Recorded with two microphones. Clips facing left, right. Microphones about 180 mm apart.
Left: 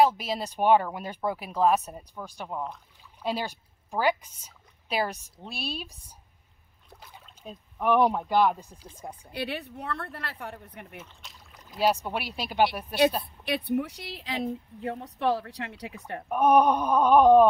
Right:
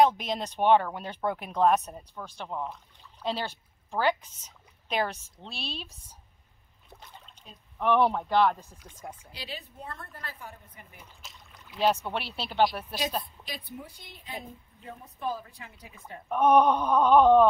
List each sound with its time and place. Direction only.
0.0 s speech: 5° left (ahead or behind)
6.9 s boat: centre (ahead or behind)
7.8 s speech: 15° left (ahead or behind)
8.7 s speech: 30° left (ahead or behind)
9.3 s a woman's voice: 60° left (ahead or behind)
11.5 s rowboat: 40° left (ahead or behind)
11.8 s speech: 10° left (ahead or behind)
13.2 s a woman's voice: 70° left (ahead or behind)
16.3 s speech: 10° left (ahead or behind)